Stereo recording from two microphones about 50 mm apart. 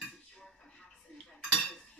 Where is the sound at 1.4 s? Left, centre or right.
Centre.